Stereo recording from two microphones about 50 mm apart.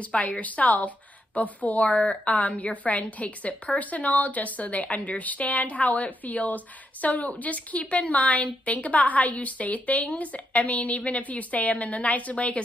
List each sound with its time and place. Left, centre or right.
0.0 s a woman's voice: left